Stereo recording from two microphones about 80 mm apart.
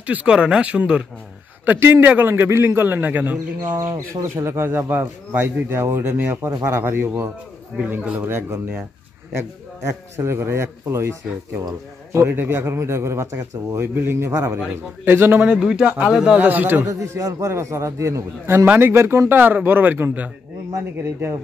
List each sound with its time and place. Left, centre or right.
0.0 s speech: centre
1.7 s speech: right
3.7 s speech: right
4.2 s a man's voice: right
10.1 s a man's voice: right
14.3 s a man's voice: right
15.0 s speech: right
15.5 s speech: centre
16.3 s speech: right
16.8 s a man's voice: right
18.7 s speech: right
20.7 s a man's voice: right